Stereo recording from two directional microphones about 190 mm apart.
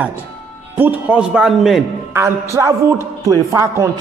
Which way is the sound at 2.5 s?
15° right (ahead or behind).